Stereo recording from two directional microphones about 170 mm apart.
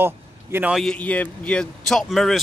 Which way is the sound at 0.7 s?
5° left (ahead or behind).